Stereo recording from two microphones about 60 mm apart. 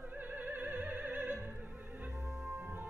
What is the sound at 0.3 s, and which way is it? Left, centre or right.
Opera, right.